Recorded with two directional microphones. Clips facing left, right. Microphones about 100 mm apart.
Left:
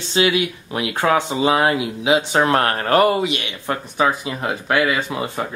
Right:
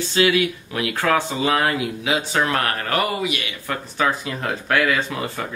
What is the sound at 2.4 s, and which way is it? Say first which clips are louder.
Speech: left 5 dB; 30° left (ahead or behind).